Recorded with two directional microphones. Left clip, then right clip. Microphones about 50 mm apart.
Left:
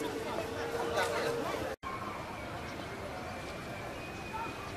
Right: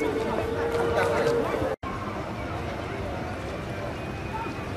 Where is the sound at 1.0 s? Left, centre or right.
Left.